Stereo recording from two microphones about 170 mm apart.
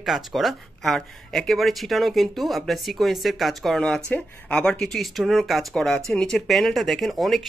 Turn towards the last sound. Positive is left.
turn(degrees=0)  # may be behind; listen again after turning